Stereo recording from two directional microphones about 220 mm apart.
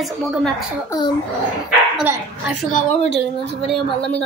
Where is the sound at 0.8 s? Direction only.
20° left (ahead or behind).